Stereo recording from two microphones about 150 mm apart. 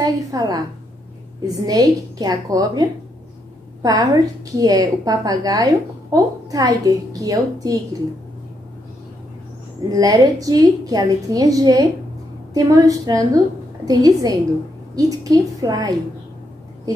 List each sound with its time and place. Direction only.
0.0 s a woman's voice: 25° right (ahead or behind)
9.8 s a woman's voice: 25° right (ahead or behind)